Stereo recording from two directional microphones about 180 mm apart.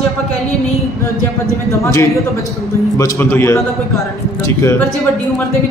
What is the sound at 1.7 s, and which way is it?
A man's voice, 15° left (ahead or behind).